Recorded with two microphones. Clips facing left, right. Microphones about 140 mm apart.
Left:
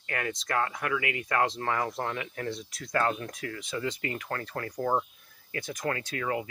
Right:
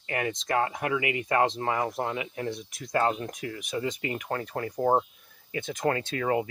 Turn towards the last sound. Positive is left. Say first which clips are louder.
# right 5 dB
turn(degrees=-35)  # may be behind; listen again after turning